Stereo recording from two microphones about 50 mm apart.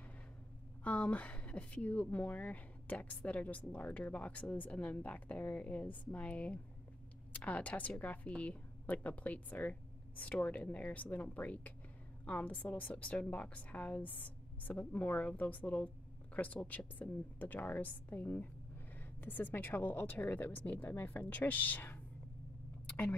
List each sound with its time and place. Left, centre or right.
0.8 s speech: left